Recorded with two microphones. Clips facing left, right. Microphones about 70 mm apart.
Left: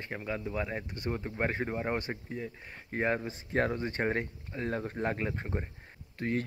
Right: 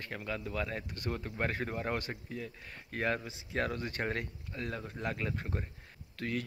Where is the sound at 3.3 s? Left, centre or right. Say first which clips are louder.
Left 5 dB; left.